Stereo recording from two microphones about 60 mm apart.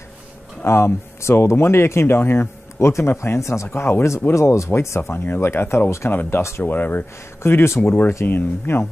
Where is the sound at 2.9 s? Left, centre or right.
Left.